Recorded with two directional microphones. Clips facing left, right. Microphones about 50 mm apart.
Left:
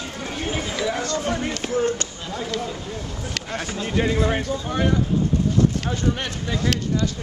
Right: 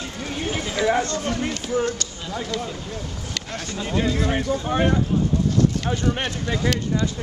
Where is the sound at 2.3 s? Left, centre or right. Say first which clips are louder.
Even; centre.